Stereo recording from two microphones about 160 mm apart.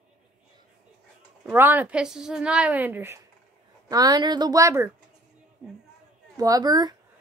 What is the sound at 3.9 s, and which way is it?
A woman's voice, 25° right (ahead or behind).